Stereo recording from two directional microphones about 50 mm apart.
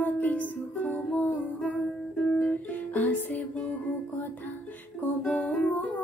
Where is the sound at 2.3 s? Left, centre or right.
Centre.